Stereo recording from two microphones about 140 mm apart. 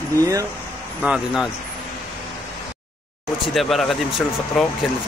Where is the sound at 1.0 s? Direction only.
5° right (ahead or behind).